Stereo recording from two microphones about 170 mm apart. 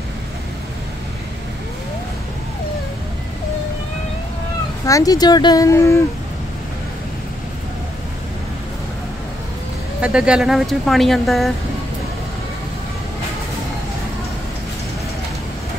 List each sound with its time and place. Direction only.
4.8 s speech: 20° left (ahead or behind)
10.0 s speech: 5° right (ahead or behind)